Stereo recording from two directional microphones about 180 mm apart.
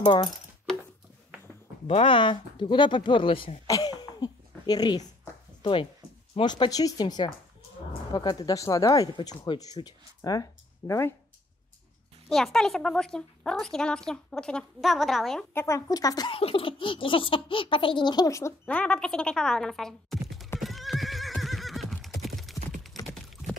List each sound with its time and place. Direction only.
0.0 s speech: 25° left (ahead or behind)
1.9 s speech: 30° left (ahead or behind); by 11.1 s 15° left (ahead or behind)
12.3 s a woman's voice: centre (ahead or behind)
15.5 s speech: 15° left (ahead or behind); by 20.4 s centre (ahead or behind)
20.6 s neigh: centre (ahead or behind)
22.2 s clip-clop: centre (ahead or behind)